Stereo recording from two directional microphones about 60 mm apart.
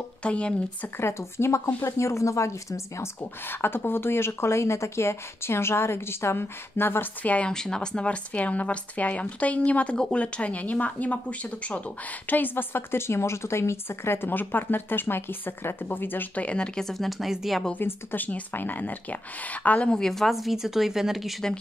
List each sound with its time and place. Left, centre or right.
0.2 s a woman's voice: centre
0.9 s speech: left
7.2 s a woman's voice: centre; by 16.4 s left
16.4 s a woman's voice: centre
17.7 s a woman's voice: left
20.0 s a woman's voice: centre